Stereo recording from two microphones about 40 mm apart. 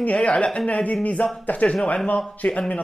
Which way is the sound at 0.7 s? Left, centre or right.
Left.